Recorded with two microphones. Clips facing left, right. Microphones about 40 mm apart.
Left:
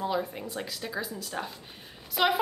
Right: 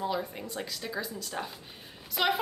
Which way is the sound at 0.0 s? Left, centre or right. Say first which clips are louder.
Left 2 dB; centre.